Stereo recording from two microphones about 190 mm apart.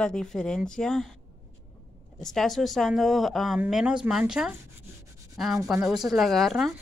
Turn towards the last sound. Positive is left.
turn(degrees=0)  # may be behind; listen again after turning